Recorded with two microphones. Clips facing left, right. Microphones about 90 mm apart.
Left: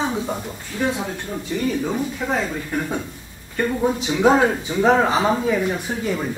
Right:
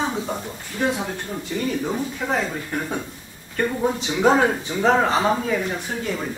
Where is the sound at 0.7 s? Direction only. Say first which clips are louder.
Even; 15° right (ahead or behind).